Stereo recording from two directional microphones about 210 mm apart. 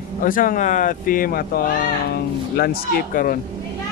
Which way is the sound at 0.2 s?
40° left (ahead or behind).